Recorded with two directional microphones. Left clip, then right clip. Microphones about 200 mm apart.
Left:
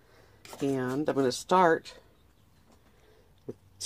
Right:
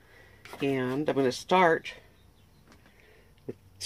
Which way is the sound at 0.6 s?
25° left (ahead or behind).